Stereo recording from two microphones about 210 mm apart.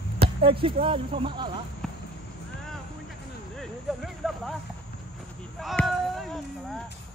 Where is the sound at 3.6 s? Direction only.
Centre (ahead or behind).